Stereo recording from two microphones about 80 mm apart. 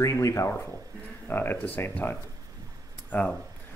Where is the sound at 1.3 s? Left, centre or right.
Left.